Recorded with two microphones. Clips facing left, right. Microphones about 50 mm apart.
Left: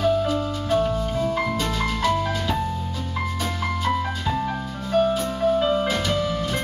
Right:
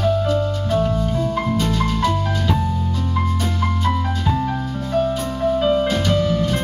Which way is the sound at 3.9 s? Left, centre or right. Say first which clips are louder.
Right 2 dB; centre.